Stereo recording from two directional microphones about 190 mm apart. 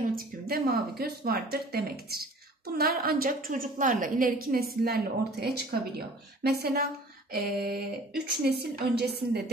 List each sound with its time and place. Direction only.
0.1 s a woman's voice: 50° right (ahead or behind)